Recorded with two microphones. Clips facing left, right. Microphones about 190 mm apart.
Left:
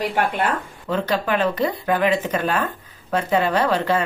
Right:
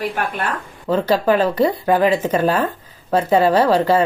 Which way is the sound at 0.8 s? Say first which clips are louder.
Right 6 dB; 30° right (ahead or behind).